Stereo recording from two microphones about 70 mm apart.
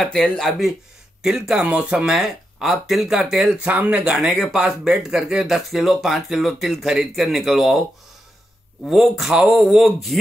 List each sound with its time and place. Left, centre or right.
0.0 s speech: centre
1.2 s speech: centre
2.1 s speech: centre
3.6 s speech: right
4.0 s speech: centre
8.8 s speech: centre